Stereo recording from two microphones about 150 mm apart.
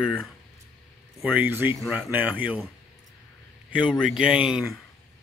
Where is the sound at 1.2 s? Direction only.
10° right (ahead or behind).